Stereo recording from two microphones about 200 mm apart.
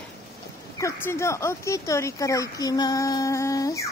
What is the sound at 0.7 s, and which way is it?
Speech, 15° left (ahead or behind).